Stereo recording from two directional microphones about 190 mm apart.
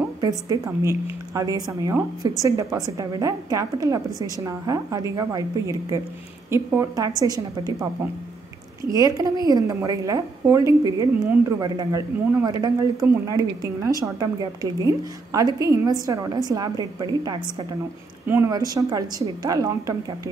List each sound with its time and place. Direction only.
0.2 s a woman's voice: 20° right (ahead or behind)
8.9 s a woman's voice: 20° right (ahead or behind)
12.3 s a woman's voice: 10° right (ahead or behind)